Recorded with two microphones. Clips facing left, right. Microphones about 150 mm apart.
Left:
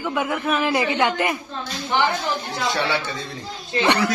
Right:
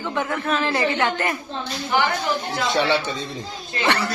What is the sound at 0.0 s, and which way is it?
A man's voice, 10° left (ahead or behind).